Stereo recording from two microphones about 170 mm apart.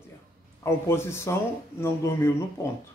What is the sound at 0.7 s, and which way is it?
Speech, 15° left (ahead or behind).